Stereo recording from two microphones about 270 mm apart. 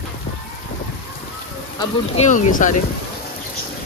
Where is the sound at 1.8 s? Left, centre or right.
Left.